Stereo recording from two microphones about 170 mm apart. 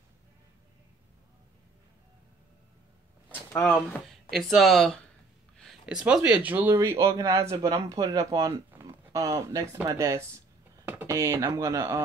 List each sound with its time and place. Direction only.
3.6 s speech: centre (ahead or behind); by 8.6 s 25° right (ahead or behind)
8.7 s a sound: 20° right (ahead or behind)
9.5 s speech: 15° right (ahead or behind)